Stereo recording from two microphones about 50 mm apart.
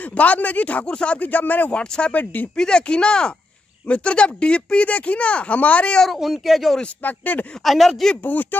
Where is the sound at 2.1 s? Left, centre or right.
Left.